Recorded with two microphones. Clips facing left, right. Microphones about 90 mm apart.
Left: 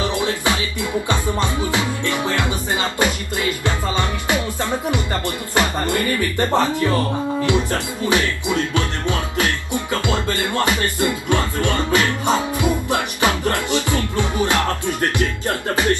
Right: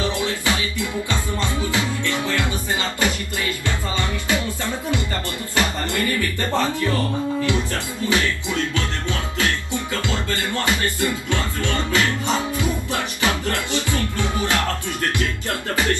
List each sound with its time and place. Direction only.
0.0 s music: 20° left (ahead or behind)
5.6 s music: 20° left (ahead or behind)
15.7 s speech: 20° left (ahead or behind)